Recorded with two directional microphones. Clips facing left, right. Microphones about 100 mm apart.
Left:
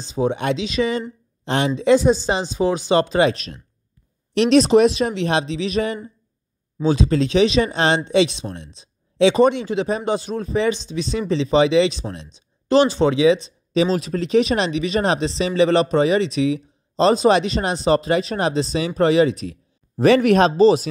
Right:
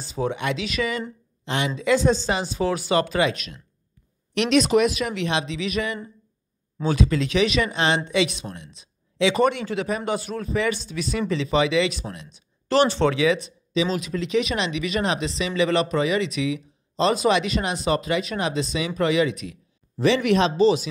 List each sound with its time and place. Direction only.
0.1 s speech: 20° left (ahead or behind); by 1.7 s 35° left (ahead or behind)
2.0 s speech: 15° left (ahead or behind)
13.7 s speech: 35° left (ahead or behind)